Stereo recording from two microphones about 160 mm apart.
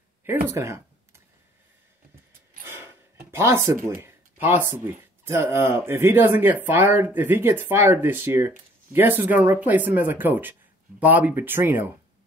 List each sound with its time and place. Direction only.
0.2 s computer keyboard: 15° right (ahead or behind)
2.6 s speech: 15° right (ahead or behind)